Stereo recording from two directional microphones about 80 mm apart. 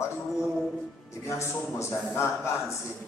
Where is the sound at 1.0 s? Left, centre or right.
Left.